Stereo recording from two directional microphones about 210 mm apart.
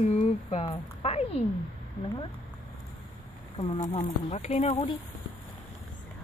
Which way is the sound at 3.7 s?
20° left (ahead or behind).